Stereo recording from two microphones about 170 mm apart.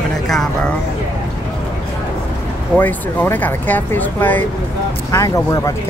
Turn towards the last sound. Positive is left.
turn(degrees=20)  # may be behind; listen again after turning